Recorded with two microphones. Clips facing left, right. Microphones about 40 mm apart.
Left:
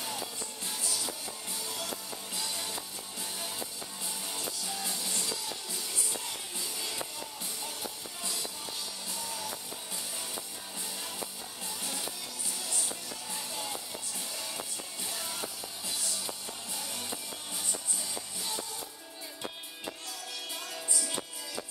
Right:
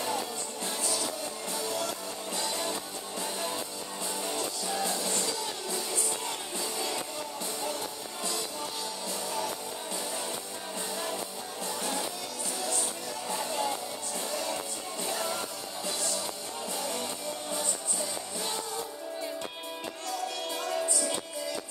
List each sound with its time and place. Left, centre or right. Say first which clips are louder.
1.5 s music: right 6 dB; centre
11.8 s music: right 7 dB; centre
13.3 s music: right 9 dB; centre
15.0 s music: right 8 dB; centre
16.7 s music: right 7 dB; centre